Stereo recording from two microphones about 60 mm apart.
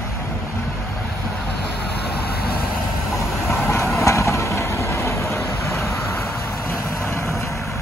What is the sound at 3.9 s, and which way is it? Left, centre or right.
Vehicle, left.